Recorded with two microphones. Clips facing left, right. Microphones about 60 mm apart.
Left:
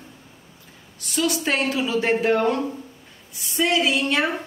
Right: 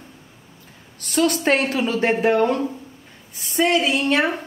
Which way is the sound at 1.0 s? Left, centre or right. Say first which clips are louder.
Right 4 dB; right.